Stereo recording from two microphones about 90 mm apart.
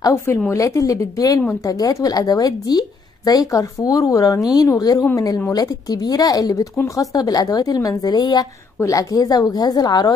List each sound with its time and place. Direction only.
0.5 s speech: 35° left (ahead or behind); by 8.5 s 50° left (ahead or behind)
8.8 s speech: 40° left (ahead or behind)